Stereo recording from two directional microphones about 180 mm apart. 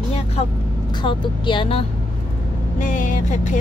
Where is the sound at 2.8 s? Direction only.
45° left (ahead or behind).